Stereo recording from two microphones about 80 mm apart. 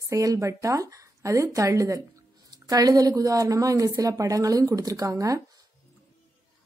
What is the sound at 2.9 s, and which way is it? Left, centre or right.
Speech, right.